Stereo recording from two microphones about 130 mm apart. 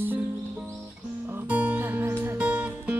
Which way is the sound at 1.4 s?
10° right (ahead or behind).